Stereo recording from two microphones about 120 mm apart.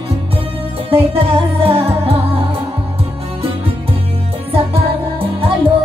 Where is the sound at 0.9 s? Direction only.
50° right (ahead or behind).